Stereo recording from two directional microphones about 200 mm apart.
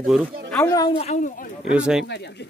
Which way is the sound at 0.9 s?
35° left (ahead or behind).